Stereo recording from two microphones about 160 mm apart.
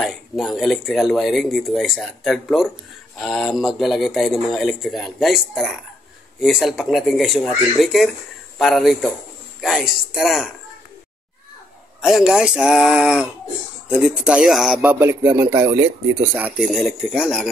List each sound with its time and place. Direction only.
0.0 s speech: centre (ahead or behind)
12.0 s speech: 5° right (ahead or behind); by 15.8 s 20° right (ahead or behind)
16.3 s speech: 10° right (ahead or behind)